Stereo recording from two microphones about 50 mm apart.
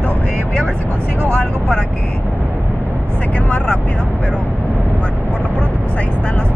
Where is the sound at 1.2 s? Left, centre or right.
Left.